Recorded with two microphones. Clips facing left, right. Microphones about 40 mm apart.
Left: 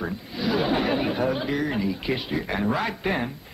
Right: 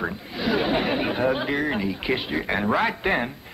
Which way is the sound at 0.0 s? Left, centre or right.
Right.